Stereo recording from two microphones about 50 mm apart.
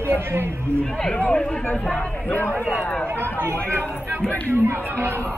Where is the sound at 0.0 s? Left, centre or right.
Right.